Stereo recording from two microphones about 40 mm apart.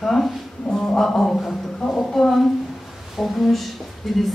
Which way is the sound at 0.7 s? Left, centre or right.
Centre.